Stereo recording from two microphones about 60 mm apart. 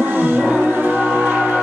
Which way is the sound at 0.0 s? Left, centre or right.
Right.